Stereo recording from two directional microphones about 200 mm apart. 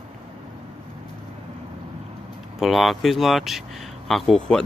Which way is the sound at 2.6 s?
Centre (ahead or behind).